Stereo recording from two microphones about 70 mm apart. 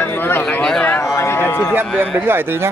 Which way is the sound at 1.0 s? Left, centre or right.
Left.